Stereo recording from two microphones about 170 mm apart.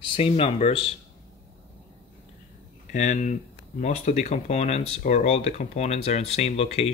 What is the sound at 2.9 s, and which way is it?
Speech, 45° left (ahead or behind).